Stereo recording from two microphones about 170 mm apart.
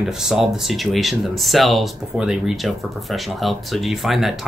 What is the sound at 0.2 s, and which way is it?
Speech, centre (ahead or behind).